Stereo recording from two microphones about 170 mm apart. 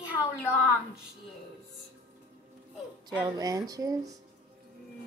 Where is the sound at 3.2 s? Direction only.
20° right (ahead or behind).